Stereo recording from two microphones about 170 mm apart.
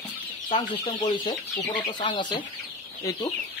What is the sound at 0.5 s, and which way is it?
Speech, 30° left (ahead or behind).